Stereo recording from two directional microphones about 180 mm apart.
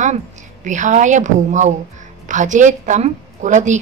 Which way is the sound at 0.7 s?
45° right (ahead or behind).